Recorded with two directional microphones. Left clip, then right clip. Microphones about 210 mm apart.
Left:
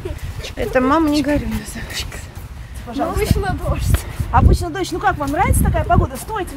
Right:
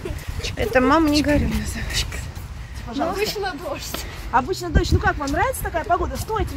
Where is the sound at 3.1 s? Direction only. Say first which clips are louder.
Left 2 dB; 10° right (ahead or behind).